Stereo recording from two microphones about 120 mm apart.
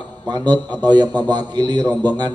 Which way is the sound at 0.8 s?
35° right (ahead or behind).